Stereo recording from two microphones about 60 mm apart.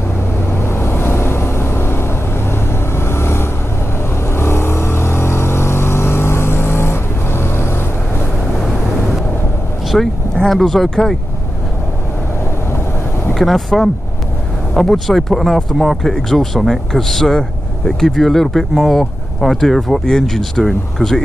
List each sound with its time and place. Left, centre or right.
0.5 s vehicle: left
9.9 s speech: centre
13.3 s speech: centre